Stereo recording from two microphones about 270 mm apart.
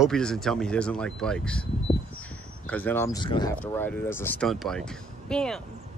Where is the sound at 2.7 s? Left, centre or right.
Centre.